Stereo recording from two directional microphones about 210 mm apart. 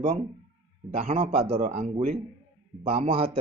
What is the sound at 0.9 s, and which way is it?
Speech, 30° right (ahead or behind).